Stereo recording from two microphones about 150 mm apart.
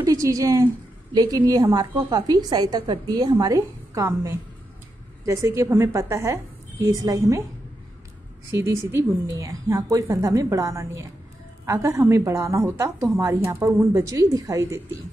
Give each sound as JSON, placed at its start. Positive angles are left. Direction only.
{"t": 0.0, "sound": "a woman's voice", "side_deg": -20}
{"t": 8.5, "sound": "a woman's voice", "side_deg": -20}